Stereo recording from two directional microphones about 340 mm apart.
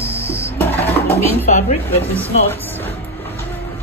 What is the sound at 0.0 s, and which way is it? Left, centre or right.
Printer, centre.